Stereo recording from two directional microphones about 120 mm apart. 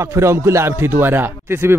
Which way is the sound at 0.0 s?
25° right (ahead or behind).